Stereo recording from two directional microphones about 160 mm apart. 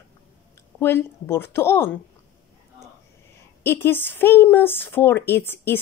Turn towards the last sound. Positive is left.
turn(degrees=15)  # may be behind; listen again after turning